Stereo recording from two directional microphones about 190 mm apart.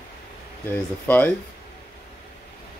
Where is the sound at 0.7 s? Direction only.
10° left (ahead or behind).